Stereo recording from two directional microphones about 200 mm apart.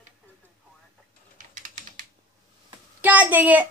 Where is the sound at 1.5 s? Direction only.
40° right (ahead or behind).